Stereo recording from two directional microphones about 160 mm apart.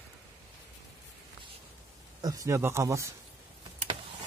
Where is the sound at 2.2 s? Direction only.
20° right (ahead or behind).